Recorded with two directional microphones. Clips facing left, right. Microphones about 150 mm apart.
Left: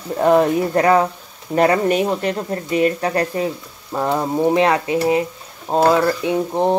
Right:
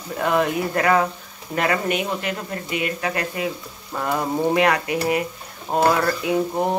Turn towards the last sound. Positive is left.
turn(degrees=25)  # may be behind; listen again after turning